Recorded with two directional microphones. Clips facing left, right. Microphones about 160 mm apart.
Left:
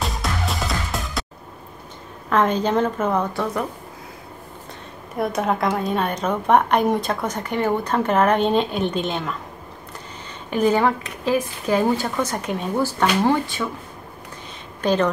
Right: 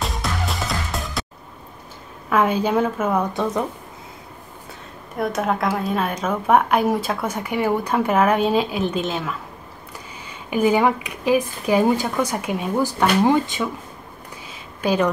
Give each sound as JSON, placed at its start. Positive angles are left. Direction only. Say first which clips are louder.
{"t": 0.0, "sound": "music", "louder": "even", "side_deg": 0}
{"t": 2.2, "sound": "speech", "louder": "even", "side_deg": -10}
{"t": 3.3, "sound": "a woman's voice", "louder": "right 2 dB", "side_deg": -20}
{"t": 5.1, "sound": "a woman's voice", "louder": "even", "side_deg": 0}
{"t": 10.5, "sound": "speech", "louder": "right 1 dB", "side_deg": -10}
{"t": 14.8, "sound": "speech", "louder": "even", "side_deg": -10}